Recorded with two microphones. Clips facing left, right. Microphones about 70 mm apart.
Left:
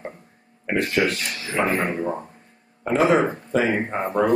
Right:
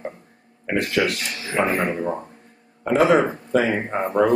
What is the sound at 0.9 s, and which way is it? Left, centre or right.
Speech, right.